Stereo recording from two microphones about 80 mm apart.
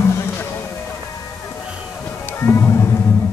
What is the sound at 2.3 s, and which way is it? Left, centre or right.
Music, left.